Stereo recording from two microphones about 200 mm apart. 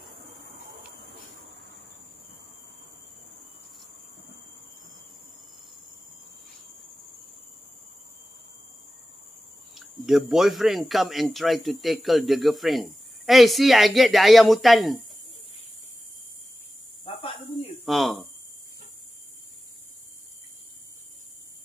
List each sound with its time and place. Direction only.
9.8 s speech: centre (ahead or behind)
17.0 s cricket: 30° left (ahead or behind)
17.8 s hum: centre (ahead or behind)